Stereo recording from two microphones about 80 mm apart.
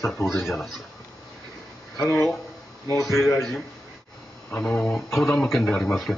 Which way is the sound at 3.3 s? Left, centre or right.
Centre.